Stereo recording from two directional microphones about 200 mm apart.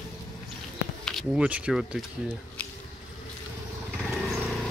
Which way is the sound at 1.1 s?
Centre (ahead or behind).